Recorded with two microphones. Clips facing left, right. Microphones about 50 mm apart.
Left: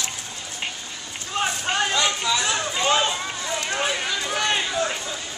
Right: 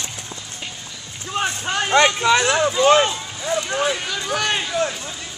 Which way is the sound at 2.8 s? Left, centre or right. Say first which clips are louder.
Right 6 dB; right.